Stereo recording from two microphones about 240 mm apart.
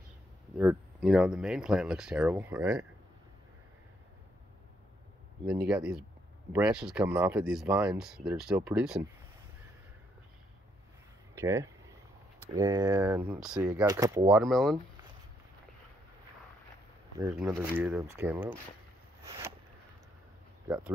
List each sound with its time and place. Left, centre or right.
0.6 s speech: centre
5.7 s speech: centre
11.3 s speech: centre
14.4 s speech: centre
17.2 s speech: centre
19.2 s a sound: centre
20.6 s speech: centre